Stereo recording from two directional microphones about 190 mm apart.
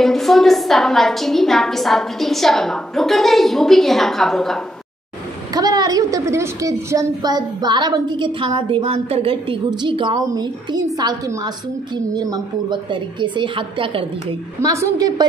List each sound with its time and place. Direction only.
0.0 s a woman's voice: centre (ahead or behind)
5.5 s a woman's voice: 20° right (ahead or behind)